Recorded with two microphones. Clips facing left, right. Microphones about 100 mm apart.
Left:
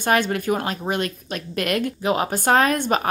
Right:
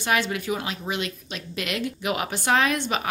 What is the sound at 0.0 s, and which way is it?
A woman's voice, 45° left (ahead or behind).